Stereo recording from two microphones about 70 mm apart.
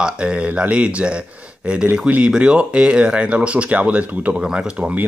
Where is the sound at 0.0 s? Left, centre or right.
Centre.